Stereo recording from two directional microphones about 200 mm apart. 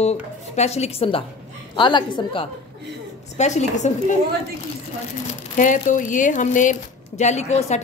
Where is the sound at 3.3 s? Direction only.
35° left (ahead or behind).